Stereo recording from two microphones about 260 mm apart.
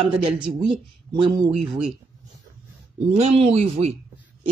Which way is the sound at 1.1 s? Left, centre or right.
Centre.